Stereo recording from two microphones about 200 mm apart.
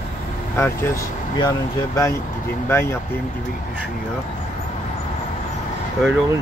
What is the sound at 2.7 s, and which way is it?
Speech, 10° left (ahead or behind).